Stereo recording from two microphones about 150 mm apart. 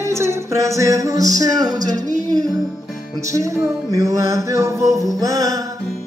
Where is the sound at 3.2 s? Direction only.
20° right (ahead or behind).